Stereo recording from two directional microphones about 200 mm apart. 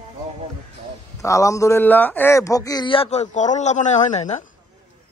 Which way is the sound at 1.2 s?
15° left (ahead or behind).